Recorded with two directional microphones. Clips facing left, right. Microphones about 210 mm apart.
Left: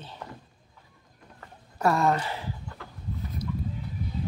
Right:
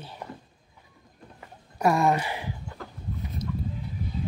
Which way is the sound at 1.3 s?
15° right (ahead or behind).